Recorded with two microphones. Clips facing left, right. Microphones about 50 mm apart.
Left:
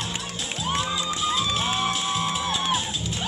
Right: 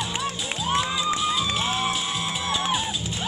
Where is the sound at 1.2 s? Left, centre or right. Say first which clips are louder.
Even; centre.